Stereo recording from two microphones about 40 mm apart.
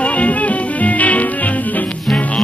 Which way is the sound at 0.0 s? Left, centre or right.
Left.